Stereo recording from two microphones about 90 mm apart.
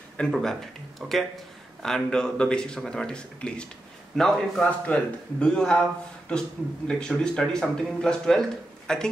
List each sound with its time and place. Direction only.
0.2 s a man's voice: 5° left (ahead or behind)